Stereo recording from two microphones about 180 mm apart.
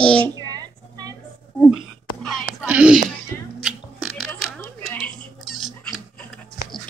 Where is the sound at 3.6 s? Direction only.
Centre (ahead or behind).